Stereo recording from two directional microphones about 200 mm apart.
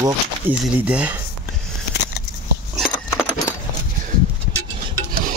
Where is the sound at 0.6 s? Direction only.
5° right (ahead or behind).